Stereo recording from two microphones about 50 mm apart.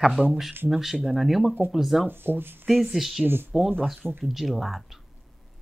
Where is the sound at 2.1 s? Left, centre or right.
Right.